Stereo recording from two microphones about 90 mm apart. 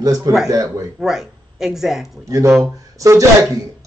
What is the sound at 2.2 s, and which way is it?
A man's voice, 35° right (ahead or behind).